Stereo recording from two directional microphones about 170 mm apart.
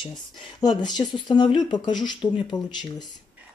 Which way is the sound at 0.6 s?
25° left (ahead or behind).